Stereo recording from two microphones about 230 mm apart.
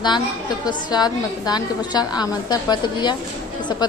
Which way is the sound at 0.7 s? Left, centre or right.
Centre.